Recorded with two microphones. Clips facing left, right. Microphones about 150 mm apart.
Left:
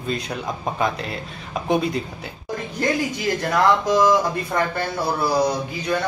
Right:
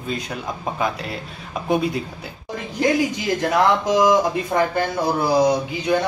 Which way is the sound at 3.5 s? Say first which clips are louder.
Even; 15° right (ahead or behind).